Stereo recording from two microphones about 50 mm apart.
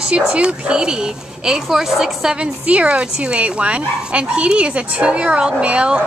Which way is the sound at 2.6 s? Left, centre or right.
Right.